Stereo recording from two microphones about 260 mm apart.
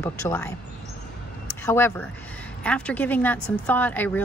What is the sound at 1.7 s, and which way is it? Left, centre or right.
Speech, centre.